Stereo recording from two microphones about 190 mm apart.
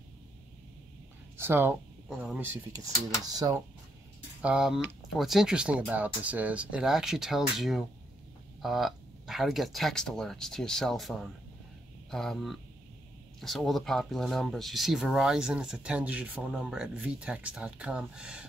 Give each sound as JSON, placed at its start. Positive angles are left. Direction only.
{"t": 1.3, "sound": "speech", "side_deg": -10}
{"t": 2.7, "sound": "speech", "side_deg": -20}
{"t": 4.4, "sound": "speech", "side_deg": -5}